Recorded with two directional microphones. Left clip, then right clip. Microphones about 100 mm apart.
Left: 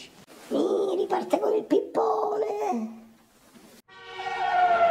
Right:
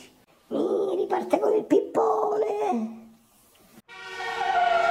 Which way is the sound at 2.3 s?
60° right (ahead or behind).